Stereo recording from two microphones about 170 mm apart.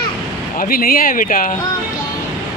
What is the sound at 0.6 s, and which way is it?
Speech, 60° left (ahead or behind).